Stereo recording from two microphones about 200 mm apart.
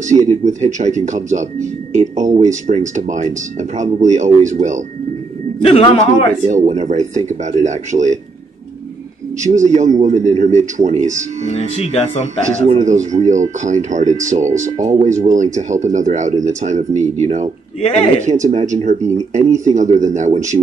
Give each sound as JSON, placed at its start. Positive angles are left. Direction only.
{"t": 0.1, "sound": "speech", "side_deg": -35}
{"t": 5.6, "sound": "a man's voice", "side_deg": 30}
{"t": 6.4, "sound": "speech", "side_deg": -40}
{"t": 9.4, "sound": "speech", "side_deg": -35}
{"t": 11.5, "sound": "speech", "side_deg": 30}
{"t": 12.5, "sound": "speech", "side_deg": -35}
{"t": 17.7, "sound": "speech", "side_deg": 30}
{"t": 18.2, "sound": "speech", "side_deg": -40}